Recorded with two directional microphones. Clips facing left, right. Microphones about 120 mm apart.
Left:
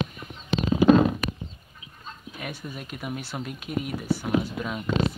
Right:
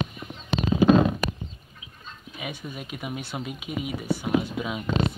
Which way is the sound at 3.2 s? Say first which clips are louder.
Right 1 dB; 20° right (ahead or behind).